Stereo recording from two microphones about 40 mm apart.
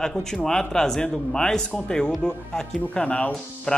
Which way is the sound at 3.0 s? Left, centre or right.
Left.